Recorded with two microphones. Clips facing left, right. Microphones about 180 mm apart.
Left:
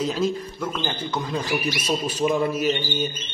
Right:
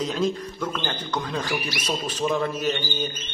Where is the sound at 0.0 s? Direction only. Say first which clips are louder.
Left 1 dB; 5° left (ahead or behind).